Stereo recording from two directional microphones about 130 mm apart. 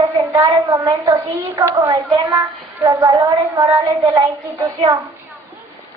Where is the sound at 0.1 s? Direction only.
20° right (ahead or behind).